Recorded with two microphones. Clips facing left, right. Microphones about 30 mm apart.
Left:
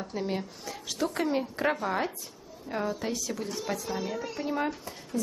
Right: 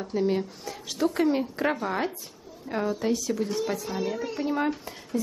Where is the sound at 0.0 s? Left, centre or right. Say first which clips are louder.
Right 6 dB; centre.